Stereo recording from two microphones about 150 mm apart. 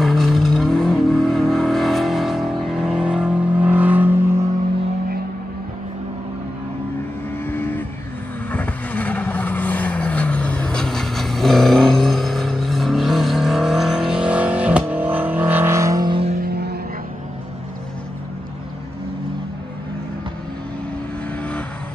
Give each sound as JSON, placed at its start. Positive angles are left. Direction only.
{"t": 0.0, "sound": "vehicle", "side_deg": 0}
{"t": 7.4, "sound": "vehicle", "side_deg": 15}
{"t": 16.1, "sound": "vehicle", "side_deg": -40}